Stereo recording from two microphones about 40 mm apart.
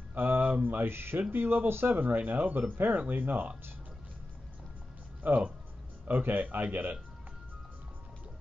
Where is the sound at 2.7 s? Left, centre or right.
Right.